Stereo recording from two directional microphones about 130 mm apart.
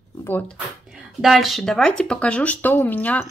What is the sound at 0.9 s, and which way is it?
A woman's voice, centre (ahead or behind).